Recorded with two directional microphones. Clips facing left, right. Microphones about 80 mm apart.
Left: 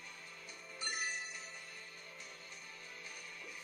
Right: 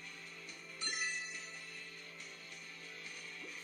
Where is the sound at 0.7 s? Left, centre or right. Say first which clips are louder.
Even; left.